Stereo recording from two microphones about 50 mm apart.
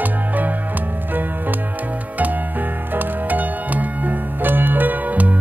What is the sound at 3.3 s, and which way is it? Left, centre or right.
Music, right.